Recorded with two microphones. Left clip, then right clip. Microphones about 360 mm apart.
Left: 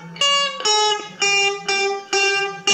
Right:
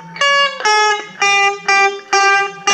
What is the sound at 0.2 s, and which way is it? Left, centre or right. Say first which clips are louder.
Music: right 5 dB; centre.